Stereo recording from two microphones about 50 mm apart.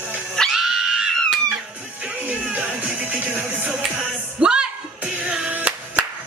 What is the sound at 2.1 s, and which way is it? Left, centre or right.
Music, right.